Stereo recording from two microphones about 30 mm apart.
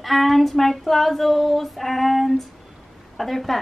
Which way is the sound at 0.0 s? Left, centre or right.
Centre.